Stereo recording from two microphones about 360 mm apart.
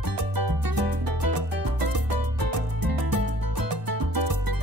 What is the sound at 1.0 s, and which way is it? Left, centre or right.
Music, right.